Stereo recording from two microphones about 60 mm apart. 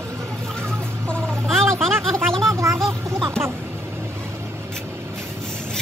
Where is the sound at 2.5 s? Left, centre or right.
Right.